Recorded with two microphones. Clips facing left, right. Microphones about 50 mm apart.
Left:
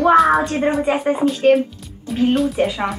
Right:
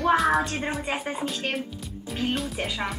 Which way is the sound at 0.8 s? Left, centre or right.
Left.